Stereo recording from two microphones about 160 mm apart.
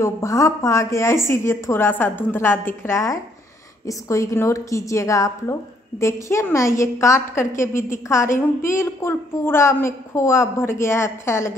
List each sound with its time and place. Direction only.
0.0 s a woman's voice: 20° left (ahead or behind)